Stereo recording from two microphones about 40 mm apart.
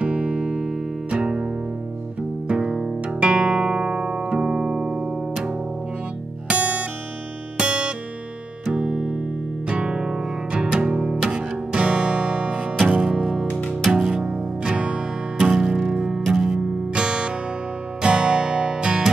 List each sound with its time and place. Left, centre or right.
0.0 s music: right
6.5 s music: right
12.8 s music: right
14.7 s music: right; by 16.6 s centre
16.9 s music: right